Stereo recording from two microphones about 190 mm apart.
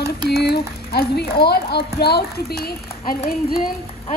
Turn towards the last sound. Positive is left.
turn(degrees=50)  # may be behind; listen again after turning